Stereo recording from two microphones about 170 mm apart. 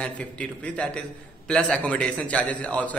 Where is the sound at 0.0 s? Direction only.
5° left (ahead or behind).